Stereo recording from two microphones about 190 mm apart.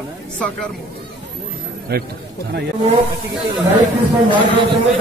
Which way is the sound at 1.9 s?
55° right (ahead or behind).